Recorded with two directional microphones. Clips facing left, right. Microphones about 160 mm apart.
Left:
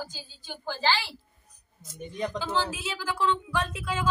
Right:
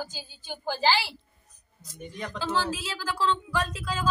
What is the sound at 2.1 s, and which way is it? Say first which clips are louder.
Speech: left 1 dB; 15° left (ahead or behind).